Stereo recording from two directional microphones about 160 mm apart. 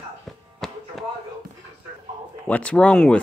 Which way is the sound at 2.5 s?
10° left (ahead or behind).